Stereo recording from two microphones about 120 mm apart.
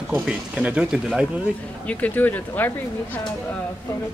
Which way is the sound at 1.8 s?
15° left (ahead or behind).